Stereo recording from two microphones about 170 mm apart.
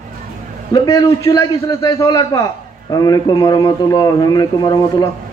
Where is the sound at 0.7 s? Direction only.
20° left (ahead or behind).